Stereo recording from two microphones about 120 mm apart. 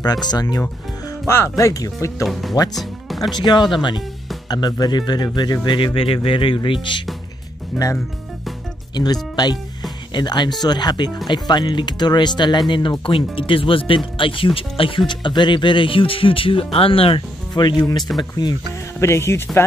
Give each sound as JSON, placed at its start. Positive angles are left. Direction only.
{"t": 0.0, "sound": "speech", "side_deg": 35}
{"t": 1.2, "sound": "speech", "side_deg": 20}
{"t": 2.7, "sound": "music", "side_deg": 0}
{"t": 3.3, "sound": "speech", "side_deg": 40}
{"t": 5.9, "sound": "speech", "side_deg": 50}
{"t": 7.7, "sound": "speech", "side_deg": 0}
{"t": 8.9, "sound": "speech", "side_deg": 35}
{"t": 18.9, "sound": "speech", "side_deg": 20}